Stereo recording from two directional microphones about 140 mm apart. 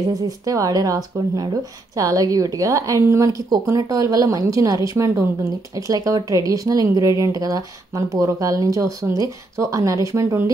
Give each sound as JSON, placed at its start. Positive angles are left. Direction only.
{"t": 0.1, "sound": "speech", "side_deg": -25}